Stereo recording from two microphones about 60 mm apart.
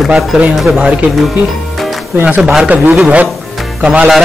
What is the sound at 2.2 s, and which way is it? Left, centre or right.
Speech, right.